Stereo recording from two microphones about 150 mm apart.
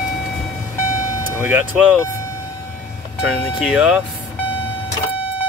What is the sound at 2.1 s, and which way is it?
Vehicle, 20° left (ahead or behind).